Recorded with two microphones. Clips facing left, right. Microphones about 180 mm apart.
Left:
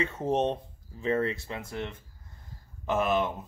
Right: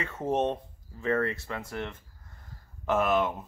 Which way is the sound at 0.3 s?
20° left (ahead or behind).